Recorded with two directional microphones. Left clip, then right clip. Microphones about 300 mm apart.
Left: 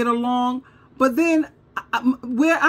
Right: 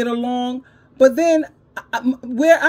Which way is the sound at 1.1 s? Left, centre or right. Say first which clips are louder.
Right 3 dB; centre.